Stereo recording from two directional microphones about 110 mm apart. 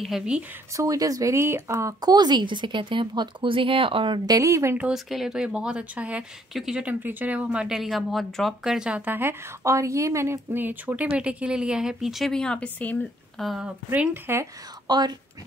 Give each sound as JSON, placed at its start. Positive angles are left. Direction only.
{"t": 0.0, "sound": "speech", "side_deg": -5}
{"t": 0.7, "sound": "speech", "side_deg": -30}
{"t": 4.3, "sound": "speech", "side_deg": -30}
{"t": 4.7, "sound": "speech", "side_deg": -5}
{"t": 13.4, "sound": "speech", "side_deg": 0}
{"t": 13.9, "sound": "speech", "side_deg": -15}
{"t": 14.9, "sound": "speech", "side_deg": -40}